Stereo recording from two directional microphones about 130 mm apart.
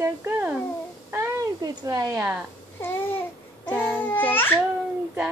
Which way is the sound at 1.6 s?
30° right (ahead or behind).